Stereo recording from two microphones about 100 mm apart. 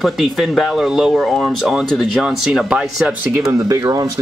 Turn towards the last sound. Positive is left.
turn(degrees=-35)  # may be behind; listen again after turning